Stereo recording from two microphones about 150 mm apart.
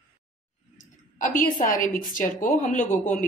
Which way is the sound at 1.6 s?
65° left (ahead or behind).